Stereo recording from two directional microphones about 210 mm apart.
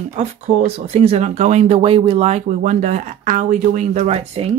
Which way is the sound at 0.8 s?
30° right (ahead or behind).